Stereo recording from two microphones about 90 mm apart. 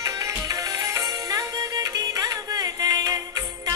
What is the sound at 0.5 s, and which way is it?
Music, 40° right (ahead or behind).